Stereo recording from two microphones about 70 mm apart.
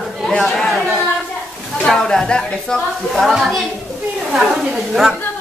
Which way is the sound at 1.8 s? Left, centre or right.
Centre.